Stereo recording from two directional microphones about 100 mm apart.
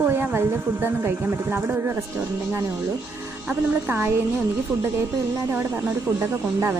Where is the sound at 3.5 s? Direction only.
25° right (ahead or behind).